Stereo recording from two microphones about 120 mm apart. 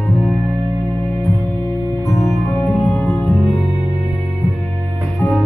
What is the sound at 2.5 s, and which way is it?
Music, centre (ahead or behind).